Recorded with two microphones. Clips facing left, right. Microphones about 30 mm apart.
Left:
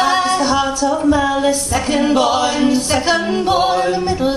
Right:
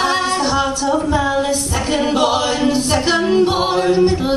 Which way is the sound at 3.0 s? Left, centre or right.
Centre.